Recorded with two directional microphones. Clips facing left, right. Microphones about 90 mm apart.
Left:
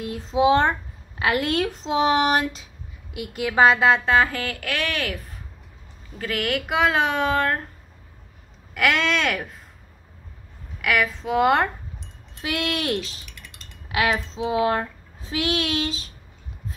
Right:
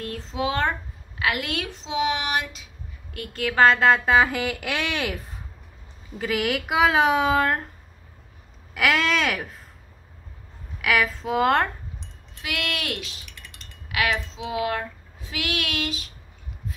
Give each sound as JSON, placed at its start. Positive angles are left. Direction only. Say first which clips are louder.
{"t": 0.0, "sound": "a sound", "louder": "left 7 dB", "side_deg": 15}
{"t": 1.2, "sound": "speech", "louder": "left 5 dB", "side_deg": 35}
{"t": 3.1, "sound": "a woman's voice", "louder": "left 1 dB", "side_deg": 15}
{"t": 4.0, "sound": "speech", "louder": "even", "side_deg": -10}
{"t": 6.1, "sound": "speech", "louder": "right 1 dB", "side_deg": -10}
{"t": 8.7, "sound": "a woman's voice", "louder": "even", "side_deg": -5}
{"t": 10.8, "sound": "a woman's voice", "louder": "even", "side_deg": 0}
{"t": 12.4, "sound": "a sound", "louder": "left 4 dB", "side_deg": 30}
{"t": 14.1, "sound": "a sound", "louder": "left 4 dB", "side_deg": 30}